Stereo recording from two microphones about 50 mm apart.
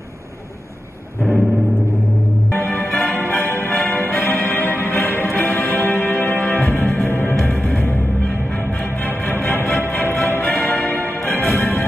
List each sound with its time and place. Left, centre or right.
2.5 s music: left